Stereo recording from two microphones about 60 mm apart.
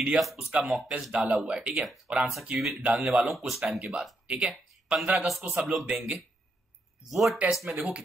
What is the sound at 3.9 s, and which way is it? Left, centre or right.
Speech, centre.